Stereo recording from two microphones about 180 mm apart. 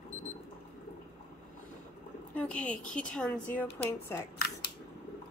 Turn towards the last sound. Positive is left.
turn(degrees=55)  # may be behind; listen again after turning